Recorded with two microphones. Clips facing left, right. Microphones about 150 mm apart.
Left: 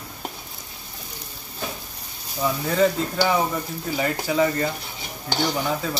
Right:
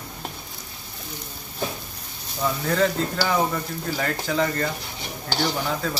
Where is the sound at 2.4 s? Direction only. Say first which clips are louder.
Left 2 dB; 5° left (ahead or behind).